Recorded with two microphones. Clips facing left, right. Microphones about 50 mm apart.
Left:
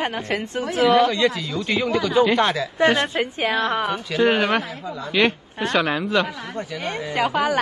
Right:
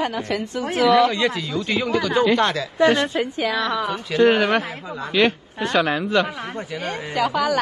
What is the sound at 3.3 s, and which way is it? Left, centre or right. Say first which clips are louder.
Speech: left 1 dB; left.